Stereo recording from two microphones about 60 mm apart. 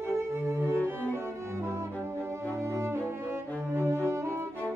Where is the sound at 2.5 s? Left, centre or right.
Right.